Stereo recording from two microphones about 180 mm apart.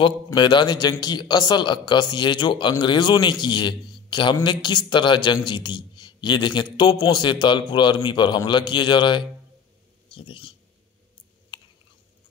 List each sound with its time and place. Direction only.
0.0 s a man's voice: 25° left (ahead or behind)